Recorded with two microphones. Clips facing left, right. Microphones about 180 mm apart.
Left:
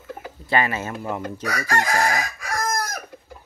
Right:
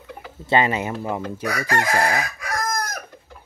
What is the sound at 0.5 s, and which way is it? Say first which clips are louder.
Speech: right 3 dB; 20° right (ahead or behind).